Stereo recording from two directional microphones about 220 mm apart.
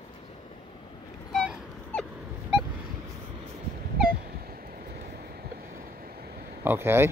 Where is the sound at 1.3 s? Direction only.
Centre (ahead or behind).